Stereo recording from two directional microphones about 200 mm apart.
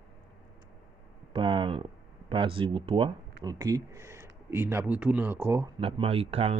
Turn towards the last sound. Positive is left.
turn(degrees=-30)  # may be behind; listen again after turning